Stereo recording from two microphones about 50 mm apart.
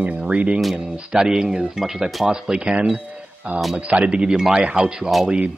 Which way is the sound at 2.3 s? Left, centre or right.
Centre.